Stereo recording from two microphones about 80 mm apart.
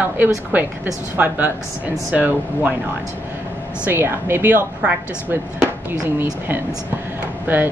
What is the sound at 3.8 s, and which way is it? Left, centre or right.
Speech, right.